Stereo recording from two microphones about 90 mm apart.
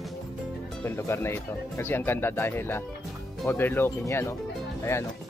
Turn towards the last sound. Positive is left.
turn(degrees=30)  # may be behind; listen again after turning